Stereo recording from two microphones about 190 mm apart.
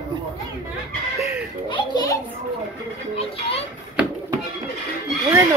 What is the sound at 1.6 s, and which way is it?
Speech, 25° left (ahead or behind).